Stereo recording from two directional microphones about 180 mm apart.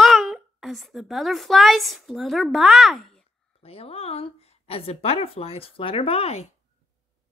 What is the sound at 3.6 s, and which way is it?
Speech, 30° left (ahead or behind).